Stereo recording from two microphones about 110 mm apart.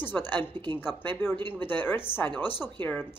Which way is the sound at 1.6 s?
20° left (ahead or behind).